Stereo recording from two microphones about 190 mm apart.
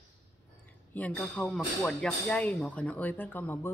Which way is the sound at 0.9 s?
5° left (ahead or behind).